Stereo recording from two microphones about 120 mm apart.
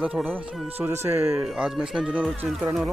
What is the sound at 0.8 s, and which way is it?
Speech, 20° right (ahead or behind).